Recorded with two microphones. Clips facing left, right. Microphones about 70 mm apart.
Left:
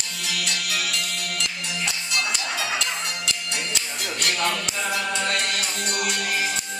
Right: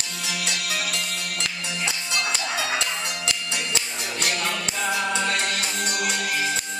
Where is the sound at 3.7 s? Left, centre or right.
Right.